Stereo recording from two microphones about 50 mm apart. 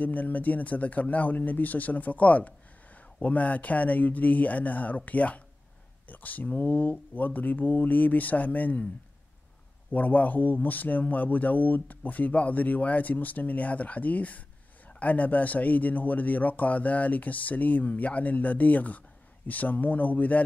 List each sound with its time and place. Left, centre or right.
0.0 s a man's voice: left
9.8 s a man's voice: left